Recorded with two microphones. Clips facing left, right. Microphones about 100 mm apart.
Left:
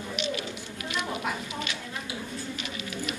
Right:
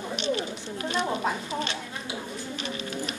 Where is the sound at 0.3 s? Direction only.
35° right (ahead or behind).